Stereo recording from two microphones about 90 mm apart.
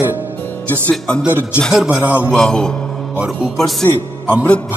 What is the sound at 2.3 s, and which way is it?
A man's voice, 5° left (ahead or behind).